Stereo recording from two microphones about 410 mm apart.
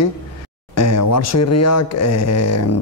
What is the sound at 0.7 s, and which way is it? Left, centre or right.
Speech, left.